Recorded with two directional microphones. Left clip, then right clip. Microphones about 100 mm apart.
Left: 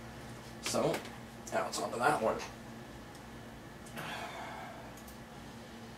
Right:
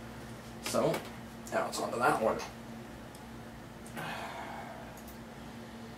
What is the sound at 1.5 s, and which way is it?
Speech, 15° right (ahead or behind).